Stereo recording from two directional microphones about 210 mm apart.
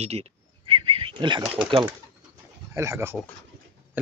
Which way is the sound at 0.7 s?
25° right (ahead or behind).